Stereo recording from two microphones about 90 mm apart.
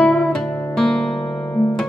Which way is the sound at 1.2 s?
20° left (ahead or behind).